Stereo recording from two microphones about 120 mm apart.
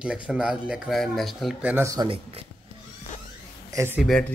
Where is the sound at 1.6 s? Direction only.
20° right (ahead or behind).